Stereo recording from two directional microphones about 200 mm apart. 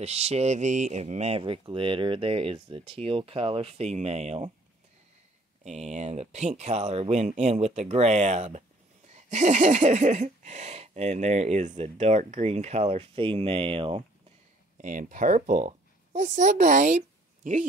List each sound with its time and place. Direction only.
0.0 s speech: 30° right (ahead or behind)
5.6 s speech: 35° right (ahead or behind)
14.8 s speech: 40° right (ahead or behind)